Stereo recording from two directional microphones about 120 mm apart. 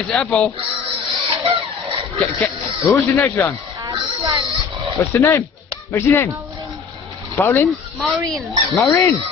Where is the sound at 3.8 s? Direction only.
35° right (ahead or behind).